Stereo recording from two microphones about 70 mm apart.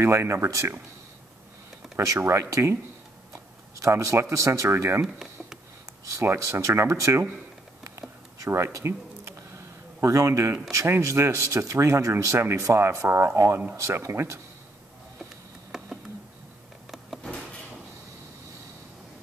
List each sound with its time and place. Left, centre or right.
0.0 s speech: right
2.1 s speech: right
5.0 s a sound: centre
6.0 s speech: right
8.4 s speech: right
15.7 s a sound: centre